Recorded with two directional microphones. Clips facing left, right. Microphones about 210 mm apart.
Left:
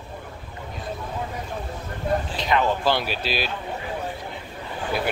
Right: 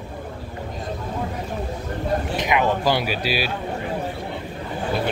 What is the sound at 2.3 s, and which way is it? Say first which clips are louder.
Speech: right 3 dB; 15° right (ahead or behind).